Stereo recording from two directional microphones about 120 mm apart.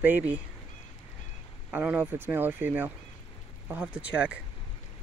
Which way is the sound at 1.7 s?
15° right (ahead or behind).